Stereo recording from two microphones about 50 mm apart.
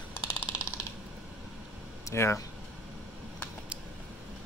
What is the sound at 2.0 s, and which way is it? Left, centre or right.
Speech, left.